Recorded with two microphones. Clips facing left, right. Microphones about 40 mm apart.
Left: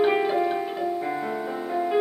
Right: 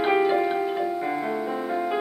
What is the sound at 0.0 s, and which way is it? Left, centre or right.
Music, centre.